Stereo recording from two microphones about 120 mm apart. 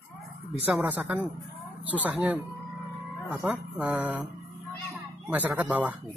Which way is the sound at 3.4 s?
10° right (ahead or behind).